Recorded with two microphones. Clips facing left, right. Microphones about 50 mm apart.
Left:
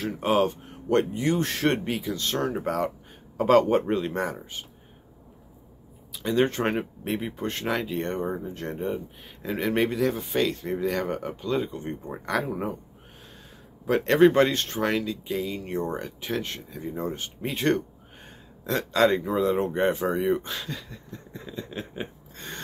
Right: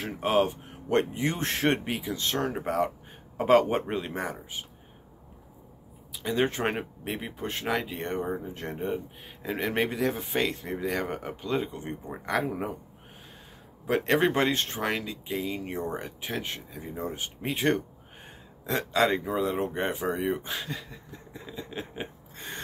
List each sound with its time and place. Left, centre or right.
0.2 s speech: centre
0.8 s speech: right
1.7 s speech: centre
6.1 s speech: centre
13.8 s speech: centre
20.4 s speech: centre